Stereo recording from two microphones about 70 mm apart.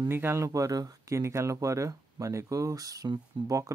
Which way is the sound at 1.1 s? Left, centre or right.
Right.